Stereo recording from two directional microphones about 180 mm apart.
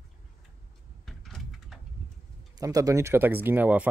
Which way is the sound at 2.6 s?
20° right (ahead or behind).